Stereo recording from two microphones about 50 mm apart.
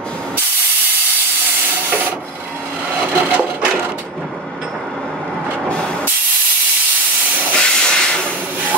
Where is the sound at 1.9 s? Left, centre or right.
Right.